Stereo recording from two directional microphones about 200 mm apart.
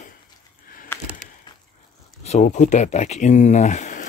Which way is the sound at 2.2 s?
35° left (ahead or behind).